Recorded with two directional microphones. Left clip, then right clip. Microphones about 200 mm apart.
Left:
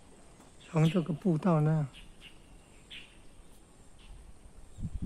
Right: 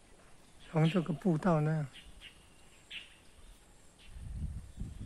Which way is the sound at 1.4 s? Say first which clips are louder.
Left 2 dB; 5° right (ahead or behind).